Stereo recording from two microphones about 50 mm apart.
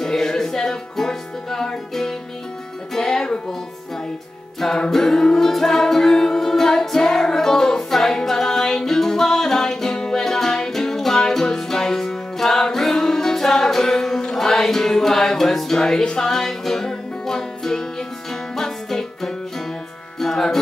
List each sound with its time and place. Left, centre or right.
0.0 s music: centre
4.6 s music: centre